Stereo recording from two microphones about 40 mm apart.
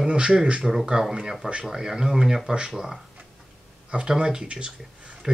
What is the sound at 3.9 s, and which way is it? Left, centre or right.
Speech, right.